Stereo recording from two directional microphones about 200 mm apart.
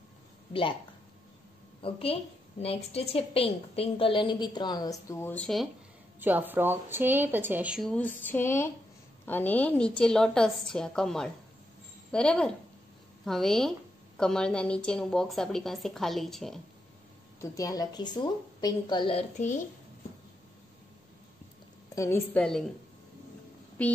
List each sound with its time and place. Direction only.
0.5 s speech: 25° left (ahead or behind)
1.8 s a woman's voice: 25° left (ahead or behind); by 5.7 s 5° left (ahead or behind)
6.1 s a woman's voice: 10° right (ahead or behind)
17.4 s a woman's voice: 15° left (ahead or behind); by 19.6 s 35° left (ahead or behind)
21.9 s a woman's voice: 15° left (ahead or behind)
23.8 s a woman's voice: 5° left (ahead or behind)